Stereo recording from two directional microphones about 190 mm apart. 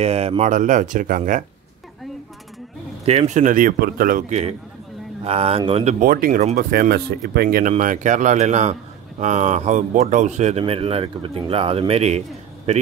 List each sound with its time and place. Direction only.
0.0 s a man's voice: 30° right (ahead or behind)
3.1 s speech: 35° right (ahead or behind)
4.3 s a man's voice: 35° right (ahead or behind)
5.9 s a man's voice: 45° right (ahead or behind)